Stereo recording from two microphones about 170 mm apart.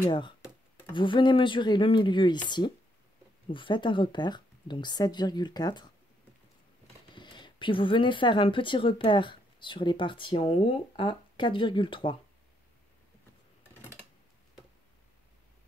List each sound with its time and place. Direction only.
0.9 s speech: 30° left (ahead or behind)
7.2 s speech: 25° left (ahead or behind)